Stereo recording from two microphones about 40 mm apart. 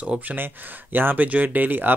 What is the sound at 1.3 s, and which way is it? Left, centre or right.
Speech, right.